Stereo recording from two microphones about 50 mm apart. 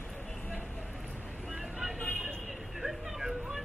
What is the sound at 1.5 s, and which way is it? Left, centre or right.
Vehicle, centre.